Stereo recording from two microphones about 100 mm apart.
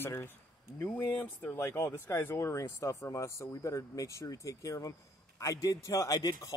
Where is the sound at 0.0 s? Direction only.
25° left (ahead or behind).